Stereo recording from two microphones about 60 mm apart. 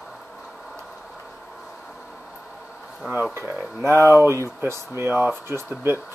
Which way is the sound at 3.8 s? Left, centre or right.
Right.